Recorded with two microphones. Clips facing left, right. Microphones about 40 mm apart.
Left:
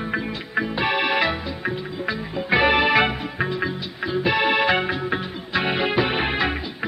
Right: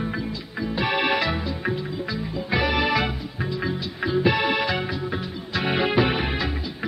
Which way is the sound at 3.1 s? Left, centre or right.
Left.